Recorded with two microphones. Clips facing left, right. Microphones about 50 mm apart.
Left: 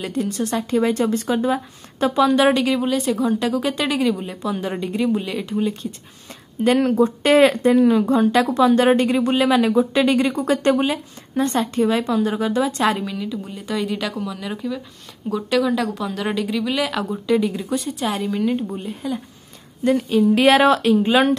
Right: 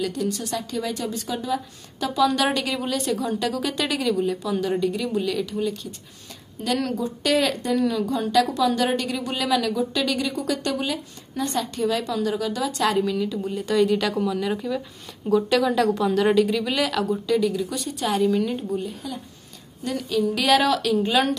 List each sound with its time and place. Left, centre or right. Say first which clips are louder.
0.0 s a woman's voice: left 3 dB; left
2.2 s a woman's voice: left 5 dB; centre
13.0 s speech: right 2 dB; centre
17.0 s speech: left 2 dB; left
18.0 s a woman's voice: right 3 dB; centre
19.8 s a woman's voice: left 7 dB; left